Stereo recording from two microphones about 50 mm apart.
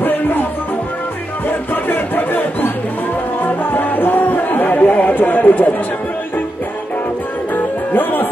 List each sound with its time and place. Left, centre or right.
0.0 s music: left
1.9 s music: left
3.7 s a sound: left
7.5 s music: left